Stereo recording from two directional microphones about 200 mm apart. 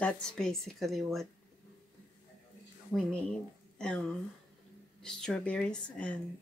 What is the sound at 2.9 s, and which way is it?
A woman's voice, 5° left (ahead or behind).